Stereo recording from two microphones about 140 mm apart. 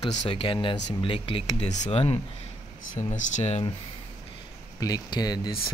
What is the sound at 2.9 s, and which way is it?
Speech, 60° left (ahead or behind).